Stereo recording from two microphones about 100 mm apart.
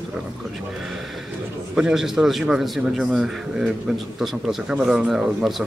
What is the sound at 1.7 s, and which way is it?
A man's voice, 5° right (ahead or behind).